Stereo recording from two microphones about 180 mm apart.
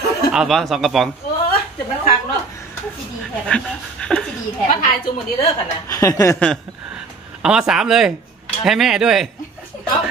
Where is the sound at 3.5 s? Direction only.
5° left (ahead or behind).